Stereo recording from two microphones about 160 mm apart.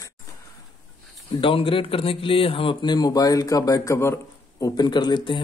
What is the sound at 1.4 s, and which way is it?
Speech, 35° left (ahead or behind).